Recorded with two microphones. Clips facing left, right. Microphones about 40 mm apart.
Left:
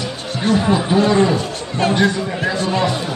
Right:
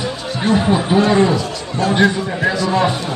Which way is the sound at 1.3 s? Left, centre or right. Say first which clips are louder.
Even; left.